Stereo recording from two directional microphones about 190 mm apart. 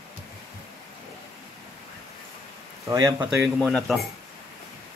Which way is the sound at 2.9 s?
15° right (ahead or behind).